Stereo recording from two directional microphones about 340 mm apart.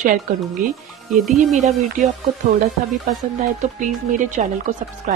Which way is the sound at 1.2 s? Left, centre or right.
Centre.